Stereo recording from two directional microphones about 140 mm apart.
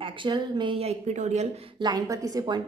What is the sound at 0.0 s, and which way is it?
Speech, 35° right (ahead or behind).